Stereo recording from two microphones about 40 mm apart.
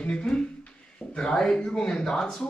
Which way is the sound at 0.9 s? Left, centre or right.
Centre.